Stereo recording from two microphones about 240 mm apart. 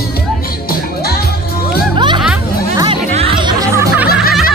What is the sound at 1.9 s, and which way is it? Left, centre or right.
Music, centre.